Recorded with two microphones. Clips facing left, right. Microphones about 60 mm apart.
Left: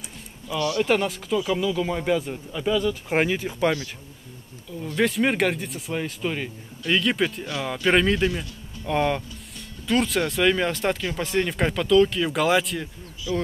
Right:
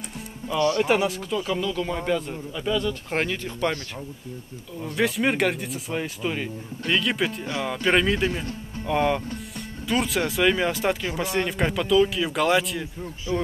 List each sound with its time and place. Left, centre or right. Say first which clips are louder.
0.6 s speech: right 2 dB; right
0.8 s speech: even; centre
4.9 s speech: left 1 dB; centre
13.3 s speech: even; right